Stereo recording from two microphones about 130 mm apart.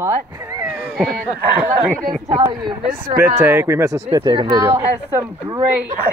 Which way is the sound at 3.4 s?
15° right (ahead or behind).